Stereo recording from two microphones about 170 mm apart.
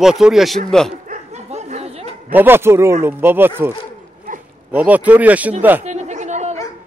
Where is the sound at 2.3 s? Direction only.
15° right (ahead or behind).